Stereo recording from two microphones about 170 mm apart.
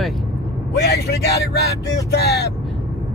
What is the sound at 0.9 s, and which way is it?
Speech, 70° left (ahead or behind).